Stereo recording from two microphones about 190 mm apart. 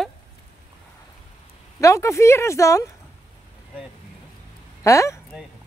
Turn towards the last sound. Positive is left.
turn(degrees=15)  # may be behind; listen again after turning